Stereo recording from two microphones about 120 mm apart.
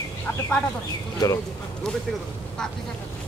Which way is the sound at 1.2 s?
35° left (ahead or behind).